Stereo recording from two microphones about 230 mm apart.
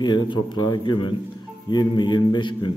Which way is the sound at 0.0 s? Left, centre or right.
Centre.